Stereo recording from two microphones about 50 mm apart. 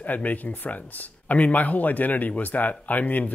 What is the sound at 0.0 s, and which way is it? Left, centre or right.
Speech, left.